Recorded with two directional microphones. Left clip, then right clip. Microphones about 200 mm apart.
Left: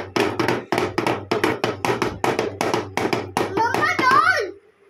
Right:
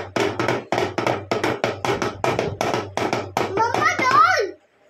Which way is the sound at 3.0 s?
15° left (ahead or behind).